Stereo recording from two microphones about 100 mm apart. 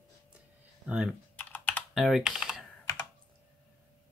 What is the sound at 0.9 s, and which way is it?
Speech, 5° right (ahead or behind).